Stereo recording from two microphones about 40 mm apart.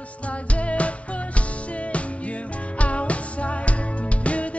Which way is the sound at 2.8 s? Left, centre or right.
Left.